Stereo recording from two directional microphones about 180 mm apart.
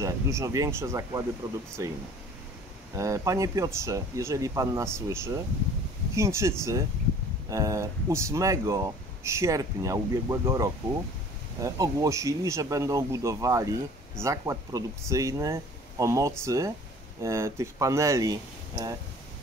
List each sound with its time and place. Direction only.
0.0 s speech: 15° right (ahead or behind)
3.0 s speech: 15° right (ahead or behind)